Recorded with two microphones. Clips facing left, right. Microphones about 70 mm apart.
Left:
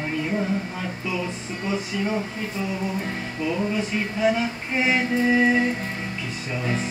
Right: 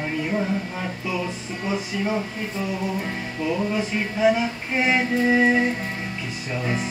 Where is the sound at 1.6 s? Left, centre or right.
Centre.